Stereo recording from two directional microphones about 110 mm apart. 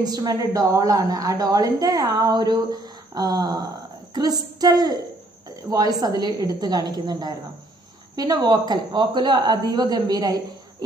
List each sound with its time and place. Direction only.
0.0 s a woman's voice: 35° right (ahead or behind)